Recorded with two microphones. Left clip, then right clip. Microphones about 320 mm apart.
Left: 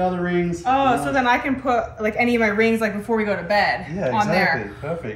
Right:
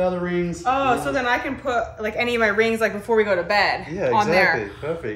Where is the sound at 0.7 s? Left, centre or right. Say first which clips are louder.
Left 2 dB; centre.